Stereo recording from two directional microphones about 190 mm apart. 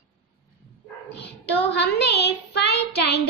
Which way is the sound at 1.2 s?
65° left (ahead or behind).